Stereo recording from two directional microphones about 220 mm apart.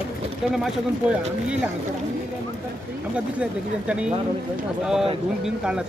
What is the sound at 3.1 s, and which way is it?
Speech, 5° right (ahead or behind).